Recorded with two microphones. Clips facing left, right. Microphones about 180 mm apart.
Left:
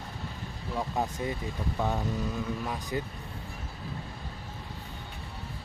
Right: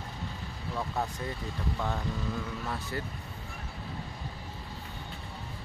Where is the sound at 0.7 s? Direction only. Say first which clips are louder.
Left 3 dB; 15° left (ahead or behind).